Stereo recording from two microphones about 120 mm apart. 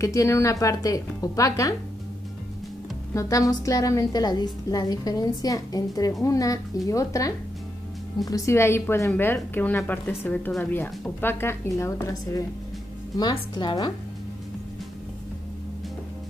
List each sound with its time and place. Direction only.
0.0 s a woman's voice: 25° left (ahead or behind)
3.2 s a woman's voice: 30° left (ahead or behind)
13.2 s a woman's voice: 40° left (ahead or behind)